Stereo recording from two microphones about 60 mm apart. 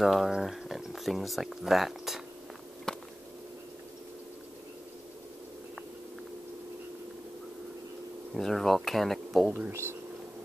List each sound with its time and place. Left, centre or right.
0.0 s speech: centre
2.9 s a sound: centre
8.4 s speech: centre
9.7 s speech: right